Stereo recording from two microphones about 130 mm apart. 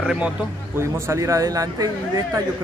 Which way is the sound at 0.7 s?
20° right (ahead or behind).